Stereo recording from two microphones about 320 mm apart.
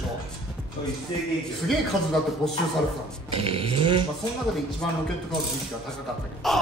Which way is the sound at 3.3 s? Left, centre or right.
Centre.